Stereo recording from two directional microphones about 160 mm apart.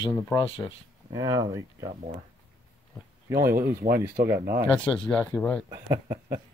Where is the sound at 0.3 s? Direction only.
25° left (ahead or behind).